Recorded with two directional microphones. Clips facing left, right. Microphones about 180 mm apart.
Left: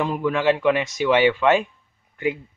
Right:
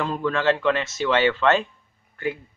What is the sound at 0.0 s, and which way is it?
Speech, 15° left (ahead or behind).